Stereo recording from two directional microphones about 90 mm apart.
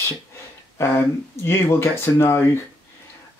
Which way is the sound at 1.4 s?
30° left (ahead or behind).